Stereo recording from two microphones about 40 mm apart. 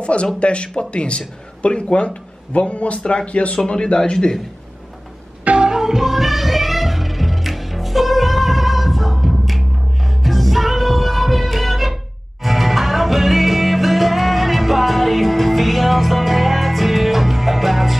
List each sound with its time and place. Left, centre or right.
0.0 s speech: left
3.0 s speech: left
3.3 s speech: left
3.5 s speech: centre
5.6 s music: centre